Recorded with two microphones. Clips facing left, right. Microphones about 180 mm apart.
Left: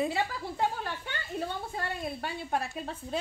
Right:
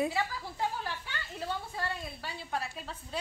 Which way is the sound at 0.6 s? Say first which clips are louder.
Left 3 dB; 60° left (ahead or behind).